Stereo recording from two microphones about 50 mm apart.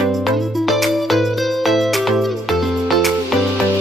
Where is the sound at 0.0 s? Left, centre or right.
Centre.